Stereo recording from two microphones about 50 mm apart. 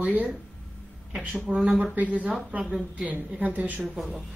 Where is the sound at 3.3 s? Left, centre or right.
Right.